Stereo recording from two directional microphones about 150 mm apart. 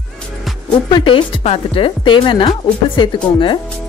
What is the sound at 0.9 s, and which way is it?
A woman's voice, 35° left (ahead or behind).